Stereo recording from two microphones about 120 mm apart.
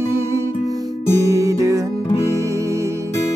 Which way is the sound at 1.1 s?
25° right (ahead or behind).